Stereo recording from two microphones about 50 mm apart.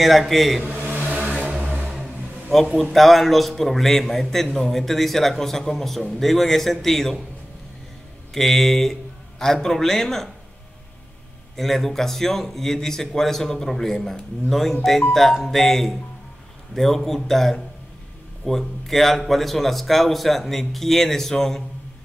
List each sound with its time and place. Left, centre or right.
0.0 s a man's voice: centre
0.7 s a sound: right
1.1 s a sound: centre
1.6 s vehicle: right
2.8 s a man's voice: centre
8.3 s a man's voice: centre
11.5 s a man's voice: centre